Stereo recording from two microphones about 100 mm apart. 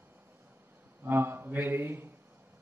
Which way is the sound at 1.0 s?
20° right (ahead or behind).